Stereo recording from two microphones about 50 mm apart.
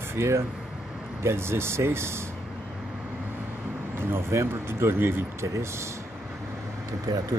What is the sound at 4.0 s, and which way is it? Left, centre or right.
Speech, right.